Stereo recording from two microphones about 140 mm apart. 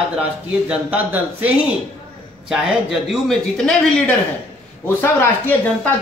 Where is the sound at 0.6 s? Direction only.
10° right (ahead or behind).